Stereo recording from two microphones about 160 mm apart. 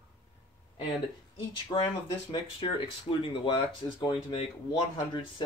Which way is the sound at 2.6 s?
30° left (ahead or behind).